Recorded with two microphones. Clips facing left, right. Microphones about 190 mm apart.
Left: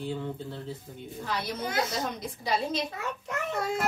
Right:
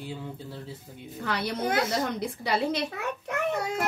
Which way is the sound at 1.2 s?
65° right (ahead or behind).